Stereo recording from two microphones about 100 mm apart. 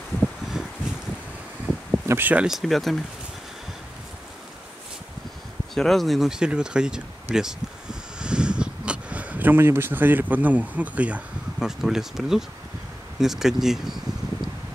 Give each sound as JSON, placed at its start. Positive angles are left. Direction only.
{"t": 1.9, "sound": "a sound", "side_deg": -20}
{"t": 2.4, "sound": "speech", "side_deg": 0}
{"t": 5.8, "sound": "speech", "side_deg": 0}